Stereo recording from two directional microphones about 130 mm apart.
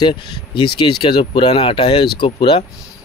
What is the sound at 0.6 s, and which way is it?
Speech, 40° left (ahead or behind).